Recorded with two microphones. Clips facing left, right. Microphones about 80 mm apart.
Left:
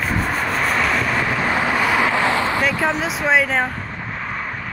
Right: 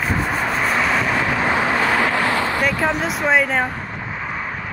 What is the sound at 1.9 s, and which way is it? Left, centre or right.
Vehicle, centre.